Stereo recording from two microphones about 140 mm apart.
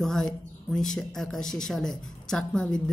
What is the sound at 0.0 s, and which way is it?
A woman's voice, 5° left (ahead or behind).